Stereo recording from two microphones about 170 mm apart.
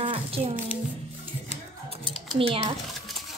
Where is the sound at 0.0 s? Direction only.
35° right (ahead or behind).